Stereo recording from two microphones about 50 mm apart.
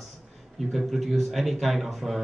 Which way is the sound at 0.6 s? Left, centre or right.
Centre.